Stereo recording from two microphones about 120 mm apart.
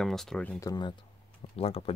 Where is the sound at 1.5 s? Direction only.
55° left (ahead or behind).